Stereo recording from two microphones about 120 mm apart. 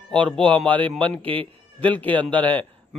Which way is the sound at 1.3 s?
50° right (ahead or behind).